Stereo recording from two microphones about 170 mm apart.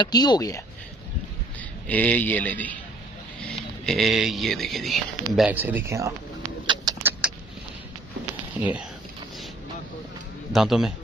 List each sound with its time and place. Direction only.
0.0 s speech: 25° left (ahead or behind)
1.9 s a man's voice: 10° left (ahead or behind); by 6.1 s 15° right (ahead or behind)
6.6 s a sound: 25° right (ahead or behind)
7.0 s vehicle: 10° right (ahead or behind)
8.5 s speech: 10° right (ahead or behind)
10.5 s speech: 5° right (ahead or behind)